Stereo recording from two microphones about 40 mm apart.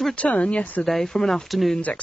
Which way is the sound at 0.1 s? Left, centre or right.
Left.